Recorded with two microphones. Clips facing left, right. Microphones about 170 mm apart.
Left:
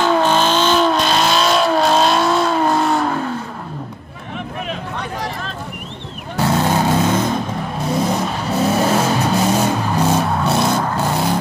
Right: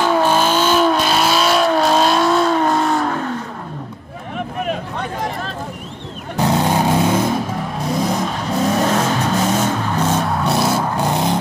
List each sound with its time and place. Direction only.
0.0 s vehicle: 10° right (ahead or behind)
6.3 s vehicle: 15° right (ahead or behind)
7.9 s vehicle: centre (ahead or behind); by 11.3 s 15° right (ahead or behind)